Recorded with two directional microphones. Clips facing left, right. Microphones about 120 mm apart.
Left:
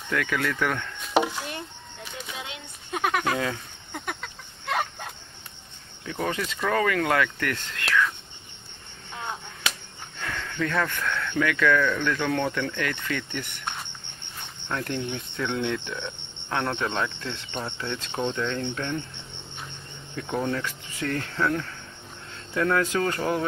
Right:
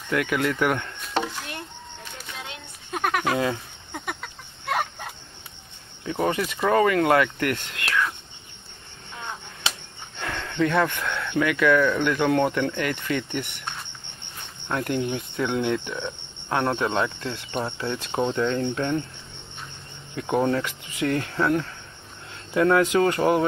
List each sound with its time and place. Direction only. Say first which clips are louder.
0.1 s speech: right 3 dB; 15° right (ahead or behind)
1.1 s a sound: left 4 dB; 10° left (ahead or behind)
6.0 s speech: right 5 dB; 25° right (ahead or behind)
6.3 s speech: right 4 dB; 15° right (ahead or behind)
6.7 s speech: right 5 dB; 25° right (ahead or behind)
9.7 s speech: right 1 dB; 25° right (ahead or behind)
14.7 s speech: right 4 dB; 15° right (ahead or behind)
20.3 s speech: right 5 dB; 35° right (ahead or behind)
21.0 s speech: right 3 dB; 15° right (ahead or behind)